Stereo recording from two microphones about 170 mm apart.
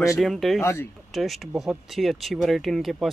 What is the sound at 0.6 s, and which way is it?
Speech, 15° left (ahead or behind).